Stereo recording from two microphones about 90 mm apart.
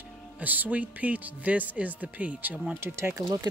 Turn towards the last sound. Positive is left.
turn(degrees=-30)  # may be behind; listen again after turning